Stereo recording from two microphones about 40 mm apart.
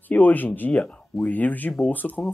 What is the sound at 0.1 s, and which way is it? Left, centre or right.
Speech, left.